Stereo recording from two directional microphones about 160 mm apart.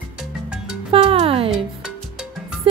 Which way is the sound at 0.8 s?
35° right (ahead or behind).